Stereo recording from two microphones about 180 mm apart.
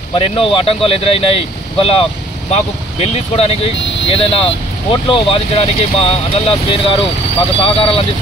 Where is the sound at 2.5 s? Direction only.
35° left (ahead or behind).